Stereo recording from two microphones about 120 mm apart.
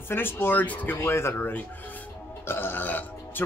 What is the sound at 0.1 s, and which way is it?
Speech, 20° left (ahead or behind).